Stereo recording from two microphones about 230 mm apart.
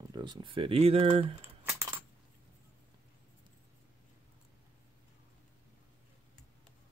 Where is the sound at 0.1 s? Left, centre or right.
Centre.